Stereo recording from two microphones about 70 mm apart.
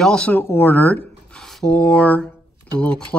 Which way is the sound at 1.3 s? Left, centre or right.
Centre.